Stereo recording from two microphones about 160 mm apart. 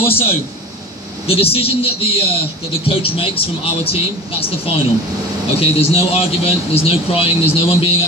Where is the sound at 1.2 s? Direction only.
35° left (ahead or behind).